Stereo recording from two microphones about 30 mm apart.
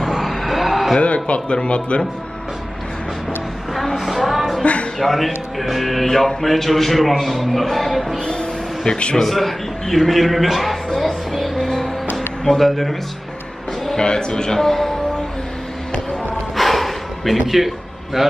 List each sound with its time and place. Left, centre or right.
0.2 s a sound: centre
0.9 s speech: left
3.7 s a sound: centre
4.9 s a man's voice: centre
8.3 s a sound: left
9.3 s a man's voice: centre
11.3 s music: centre
11.6 s music: centre
12.4 s a man's voice: centre
13.9 s a man's voice: left
16.5 s a sound: centre
17.5 s a man's voice: centre